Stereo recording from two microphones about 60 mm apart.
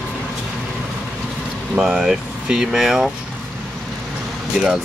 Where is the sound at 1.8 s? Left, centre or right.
Centre.